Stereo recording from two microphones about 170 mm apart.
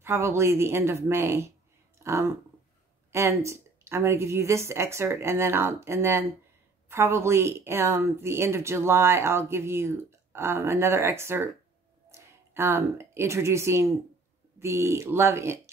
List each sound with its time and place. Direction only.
0.0 s a woman's voice: 15° right (ahead or behind)